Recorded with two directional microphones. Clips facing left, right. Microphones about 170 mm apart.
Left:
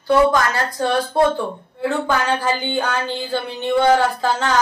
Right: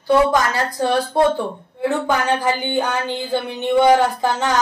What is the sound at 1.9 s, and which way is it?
A woman's voice, 15° right (ahead or behind).